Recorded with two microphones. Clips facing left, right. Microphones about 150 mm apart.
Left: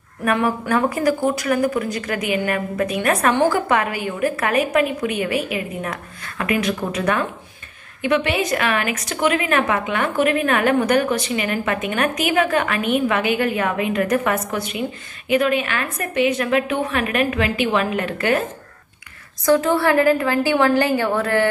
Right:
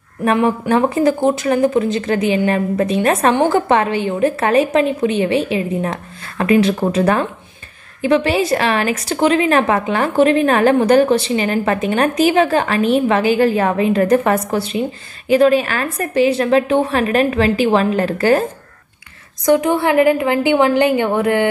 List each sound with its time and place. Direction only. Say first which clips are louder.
0.2 s a woman's voice: right 5 dB; 25° right (ahead or behind)
19.4 s a woman's voice: right 2 dB; 20° right (ahead or behind)